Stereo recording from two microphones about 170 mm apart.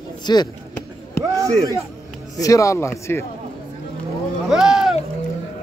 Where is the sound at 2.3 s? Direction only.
20° left (ahead or behind).